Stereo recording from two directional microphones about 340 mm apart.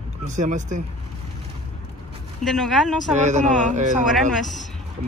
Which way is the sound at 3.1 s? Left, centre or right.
Right.